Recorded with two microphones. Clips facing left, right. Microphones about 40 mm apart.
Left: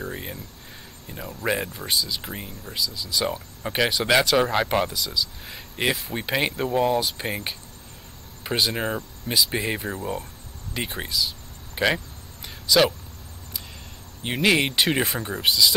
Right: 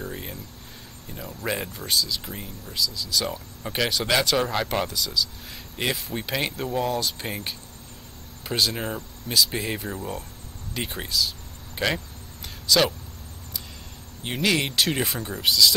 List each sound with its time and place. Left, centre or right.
0.0 s speech: centre
10.7 s a sound: centre
12.6 s speech: centre
14.2 s speech: centre